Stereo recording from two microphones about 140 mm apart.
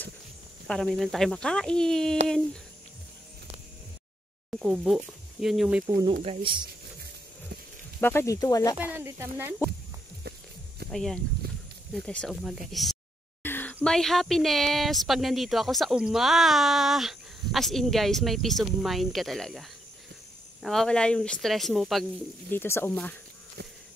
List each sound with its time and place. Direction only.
0.7 s speech: 5° left (ahead or behind)
4.5 s speech: centre (ahead or behind)
6.2 s speech: 40° right (ahead or behind)
8.0 s speech: 15° left (ahead or behind)
8.9 s speech: 15° right (ahead or behind)
10.9 s speech: 5° left (ahead or behind)
13.4 s a sound: 15° left (ahead or behind)
13.8 s speech: centre (ahead or behind)
22.5 s speech: 15° left (ahead or behind)